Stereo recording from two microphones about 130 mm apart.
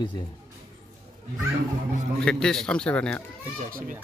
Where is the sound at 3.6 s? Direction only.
90° right.